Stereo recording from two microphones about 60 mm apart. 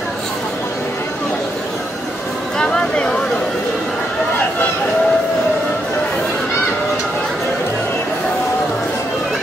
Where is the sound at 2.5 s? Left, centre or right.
Centre.